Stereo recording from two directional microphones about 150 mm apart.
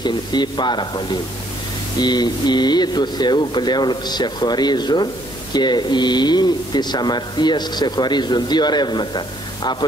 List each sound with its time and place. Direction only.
0.0 s speech: 30° left (ahead or behind)